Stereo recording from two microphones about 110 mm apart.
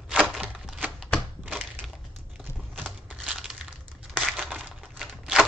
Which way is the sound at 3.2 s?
5° right (ahead or behind).